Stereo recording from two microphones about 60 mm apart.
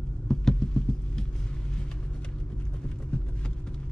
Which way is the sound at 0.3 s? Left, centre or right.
Centre.